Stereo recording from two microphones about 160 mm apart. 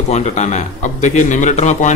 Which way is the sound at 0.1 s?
45° left (ahead or behind).